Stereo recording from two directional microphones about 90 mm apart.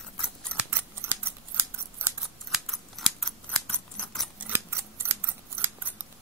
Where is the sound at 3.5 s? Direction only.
10° left (ahead or behind).